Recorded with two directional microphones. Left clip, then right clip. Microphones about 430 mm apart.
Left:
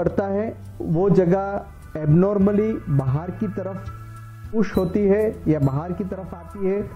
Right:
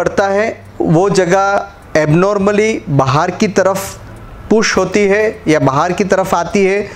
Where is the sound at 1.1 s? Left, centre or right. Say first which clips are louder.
Right 5 dB; centre.